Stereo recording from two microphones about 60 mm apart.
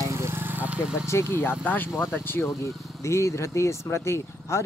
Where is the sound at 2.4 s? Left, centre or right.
Left.